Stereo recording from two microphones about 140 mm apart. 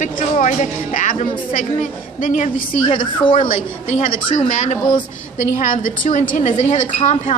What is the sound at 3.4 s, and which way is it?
Speech, 55° left (ahead or behind).